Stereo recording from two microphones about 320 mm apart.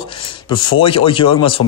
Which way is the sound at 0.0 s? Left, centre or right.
Centre.